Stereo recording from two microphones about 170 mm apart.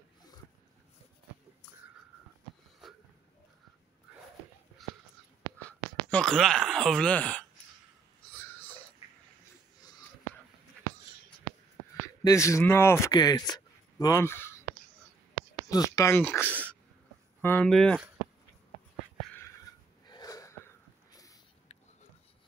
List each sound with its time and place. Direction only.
5.6 s speech: 10° left (ahead or behind)
8.5 s wheeze: 10° left (ahead or behind)
12.2 s a man's voice: 20° left (ahead or behind)
15.7 s speech: 20° left (ahead or behind)
17.6 s speech: centre (ahead or behind)
20.1 s a sound: 20° left (ahead or behind)